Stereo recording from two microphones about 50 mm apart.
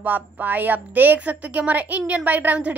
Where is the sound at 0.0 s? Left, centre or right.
Right.